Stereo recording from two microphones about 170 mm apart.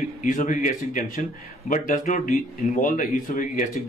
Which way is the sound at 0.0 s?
50° left (ahead or behind).